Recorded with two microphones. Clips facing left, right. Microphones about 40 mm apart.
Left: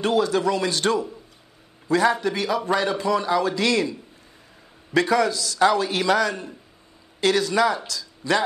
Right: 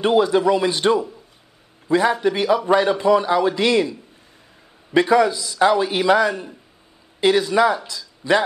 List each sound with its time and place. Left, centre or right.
0.0 s a man's voice: right
5.0 s a man's voice: centre